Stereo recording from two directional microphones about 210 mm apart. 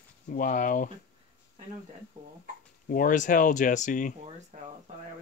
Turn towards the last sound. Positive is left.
turn(degrees=-35)  # may be behind; listen again after turning